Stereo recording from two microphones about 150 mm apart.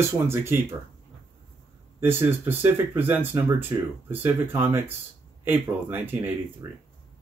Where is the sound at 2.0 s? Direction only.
15° right (ahead or behind).